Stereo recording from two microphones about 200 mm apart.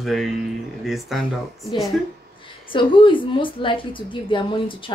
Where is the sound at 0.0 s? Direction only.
Centre (ahead or behind).